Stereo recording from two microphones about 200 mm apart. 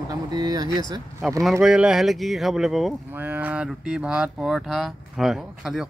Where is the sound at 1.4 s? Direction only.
Centre (ahead or behind).